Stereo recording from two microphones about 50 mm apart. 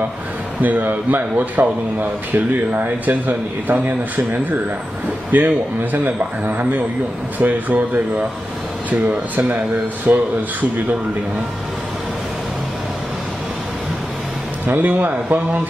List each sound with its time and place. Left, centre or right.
0.6 s speech: right
5.3 s speech: right
10.1 s speech: right
14.7 s speech: right